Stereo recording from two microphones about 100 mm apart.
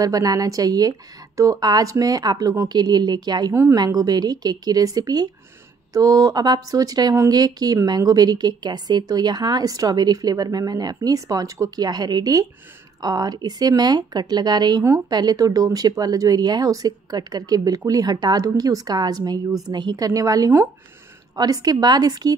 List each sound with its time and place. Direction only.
0.0 s speech: 40° right (ahead or behind)